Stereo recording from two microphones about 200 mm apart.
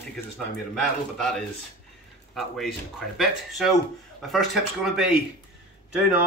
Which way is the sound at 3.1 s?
Centre (ahead or behind).